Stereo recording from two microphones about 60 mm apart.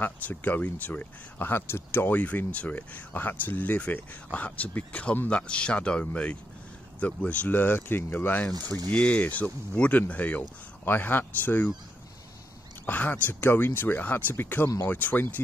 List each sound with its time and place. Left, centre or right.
0.0 s speech: left
1.5 s speech: left
2.0 s speech: left
8.9 s speech: left
12.8 s speech: left